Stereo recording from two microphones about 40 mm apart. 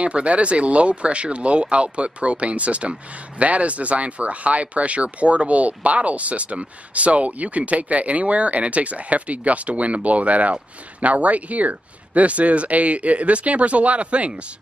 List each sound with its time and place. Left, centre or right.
0.0 s speech: right